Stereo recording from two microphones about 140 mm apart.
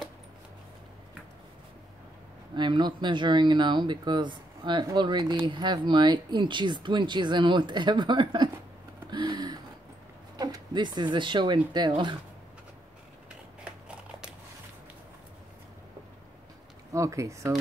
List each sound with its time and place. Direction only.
2.5 s speech: 35° right (ahead or behind)
9.1 s a sound: 30° right (ahead or behind)
10.3 s speech: 30° right (ahead or behind)
16.9 s speech: 20° right (ahead or behind)